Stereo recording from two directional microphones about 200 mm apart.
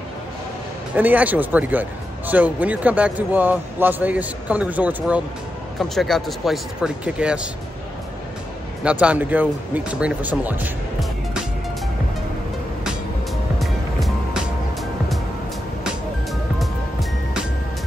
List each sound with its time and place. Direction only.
0.9 s a man's voice: 10° right (ahead or behind)
8.8 s a man's voice: 5° right (ahead or behind)
13.6 s music: centre (ahead or behind)